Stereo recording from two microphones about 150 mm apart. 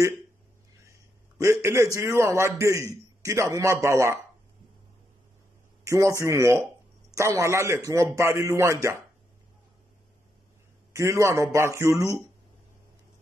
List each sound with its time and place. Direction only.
1.4 s a man's voice: 20° right (ahead or behind)
5.9 s a man's voice: 20° right (ahead or behind)
10.9 s a man's voice: 20° right (ahead or behind)